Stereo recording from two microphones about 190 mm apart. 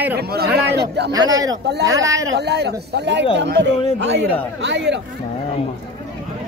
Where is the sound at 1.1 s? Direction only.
20° right (ahead or behind).